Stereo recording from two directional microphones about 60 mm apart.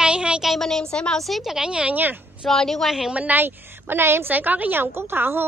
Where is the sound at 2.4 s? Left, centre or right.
Centre.